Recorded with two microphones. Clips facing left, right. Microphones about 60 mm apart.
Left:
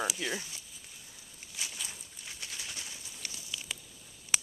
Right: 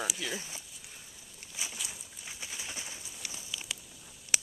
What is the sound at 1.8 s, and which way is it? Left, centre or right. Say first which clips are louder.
Bird: even; centre.